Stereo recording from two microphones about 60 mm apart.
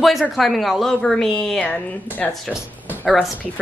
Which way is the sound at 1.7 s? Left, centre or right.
Left.